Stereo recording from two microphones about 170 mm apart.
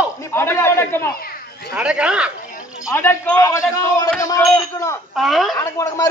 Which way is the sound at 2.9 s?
15° left (ahead or behind).